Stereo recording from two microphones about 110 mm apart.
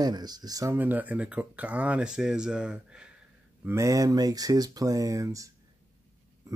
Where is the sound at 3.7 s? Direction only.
30° right (ahead or behind).